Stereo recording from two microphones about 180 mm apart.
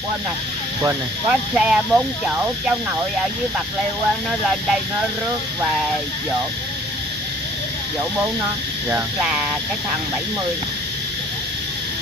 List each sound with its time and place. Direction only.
1.3 s speech: 5° right (ahead or behind)
4.3 s speech: 5° right (ahead or behind)
8.9 s speech: 5° right (ahead or behind)